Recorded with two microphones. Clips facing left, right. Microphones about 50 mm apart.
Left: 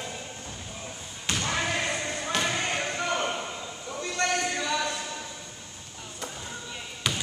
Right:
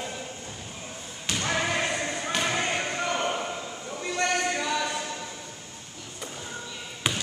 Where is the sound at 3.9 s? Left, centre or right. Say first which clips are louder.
Right 1 dB; centre.